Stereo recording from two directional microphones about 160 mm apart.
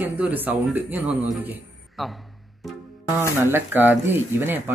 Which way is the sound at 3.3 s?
15° right (ahead or behind).